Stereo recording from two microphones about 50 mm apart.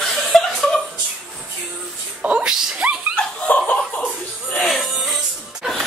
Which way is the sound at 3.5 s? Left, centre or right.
Left.